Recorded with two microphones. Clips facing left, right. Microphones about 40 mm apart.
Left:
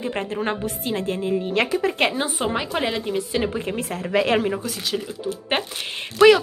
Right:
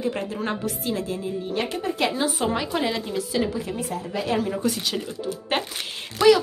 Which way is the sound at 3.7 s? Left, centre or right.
Left.